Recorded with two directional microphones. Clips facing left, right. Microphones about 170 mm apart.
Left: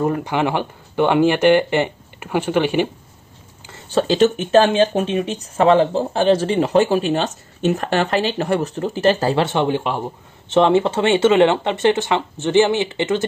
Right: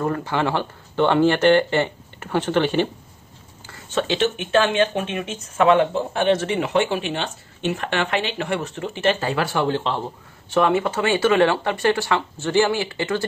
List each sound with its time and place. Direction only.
0.0 s speech: 15° left (ahead or behind)
3.9 s speech: 40° left (ahead or behind); by 10.1 s 15° left (ahead or behind)
10.5 s speech: 25° left (ahead or behind)